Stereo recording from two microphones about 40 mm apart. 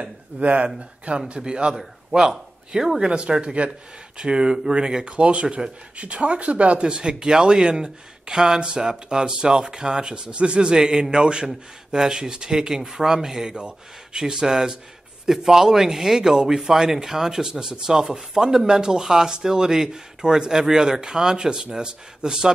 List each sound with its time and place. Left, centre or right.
0.0 s a man's voice: right; by 2.9 s centre
3.0 s speech: right